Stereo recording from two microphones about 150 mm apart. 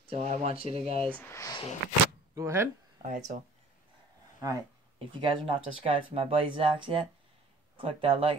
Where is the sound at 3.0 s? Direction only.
60° right (ahead or behind).